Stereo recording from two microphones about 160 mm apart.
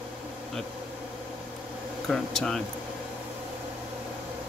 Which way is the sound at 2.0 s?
Centre (ahead or behind).